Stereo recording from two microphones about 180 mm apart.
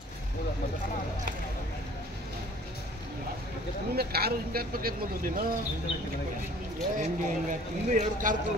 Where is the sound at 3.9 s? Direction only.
60° right (ahead or behind).